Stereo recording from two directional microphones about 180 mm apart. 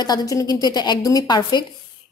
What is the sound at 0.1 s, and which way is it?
A woman's voice, 20° left (ahead or behind).